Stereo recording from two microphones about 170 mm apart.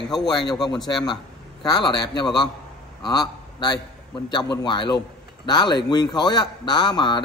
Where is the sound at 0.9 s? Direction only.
25° left (ahead or behind).